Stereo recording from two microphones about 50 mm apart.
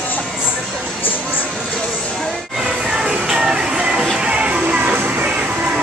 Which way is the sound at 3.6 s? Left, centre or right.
Centre.